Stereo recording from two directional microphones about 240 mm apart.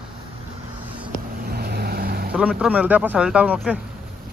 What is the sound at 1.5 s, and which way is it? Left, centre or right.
Vehicle, right.